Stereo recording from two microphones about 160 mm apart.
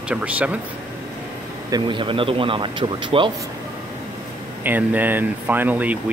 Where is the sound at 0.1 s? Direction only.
10° right (ahead or behind).